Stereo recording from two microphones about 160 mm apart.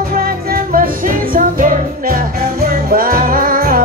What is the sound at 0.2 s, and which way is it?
Music, 65° right (ahead or behind).